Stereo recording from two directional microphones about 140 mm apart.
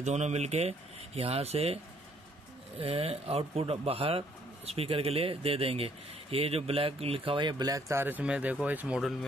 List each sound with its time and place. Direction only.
0.0 s speech: 55° right (ahead or behind)
2.8 s speech: 45° right (ahead or behind); by 9.1 s 5° right (ahead or behind)